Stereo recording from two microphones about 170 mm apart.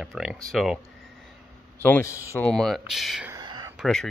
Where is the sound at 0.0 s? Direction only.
5° right (ahead or behind).